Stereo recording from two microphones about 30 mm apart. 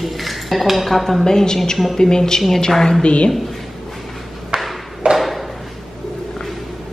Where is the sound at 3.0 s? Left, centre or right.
Left.